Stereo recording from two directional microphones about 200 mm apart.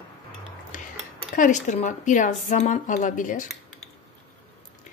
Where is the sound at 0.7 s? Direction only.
40° left (ahead or behind).